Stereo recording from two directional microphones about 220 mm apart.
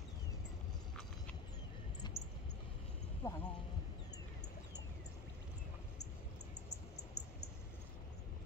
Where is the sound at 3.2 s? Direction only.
10° left (ahead or behind).